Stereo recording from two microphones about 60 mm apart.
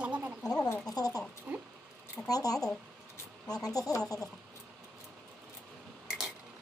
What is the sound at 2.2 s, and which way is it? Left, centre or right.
Speech, left.